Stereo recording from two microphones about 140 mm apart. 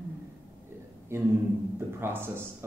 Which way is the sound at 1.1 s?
20° right (ahead or behind).